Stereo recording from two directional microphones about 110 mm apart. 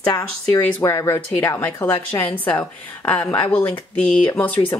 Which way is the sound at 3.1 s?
10° left (ahead or behind).